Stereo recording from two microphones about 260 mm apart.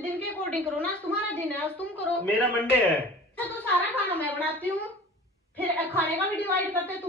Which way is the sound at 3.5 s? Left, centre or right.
Centre.